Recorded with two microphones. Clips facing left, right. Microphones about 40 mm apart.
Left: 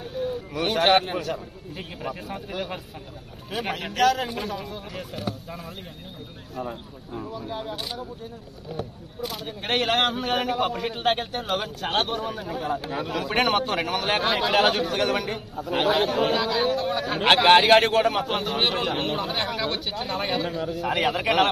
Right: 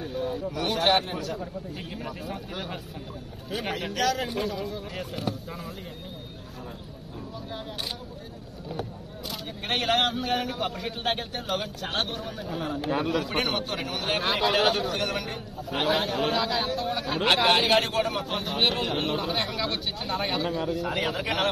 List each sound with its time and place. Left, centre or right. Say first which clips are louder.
0.1 s a sound: left 3 dB; right
0.6 s a man's voice: left 4 dB; left
2.2 s a man's voice: left 3 dB; left
9.2 s a man's voice: left 5 dB; left
12.8 s a man's voice: right 3 dB; right
13.1 s a man's voice: left 4 dB; left